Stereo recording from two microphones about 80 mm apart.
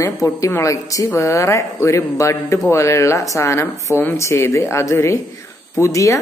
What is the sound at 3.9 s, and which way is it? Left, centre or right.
Speech, left.